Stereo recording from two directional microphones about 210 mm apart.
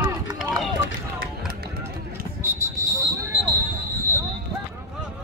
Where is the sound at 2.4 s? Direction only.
10° right (ahead or behind).